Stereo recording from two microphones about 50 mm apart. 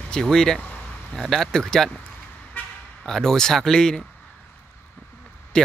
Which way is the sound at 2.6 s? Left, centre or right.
Left.